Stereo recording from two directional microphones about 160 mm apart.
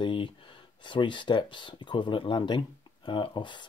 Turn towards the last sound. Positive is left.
turn(degrees=30)  # may be behind; listen again after turning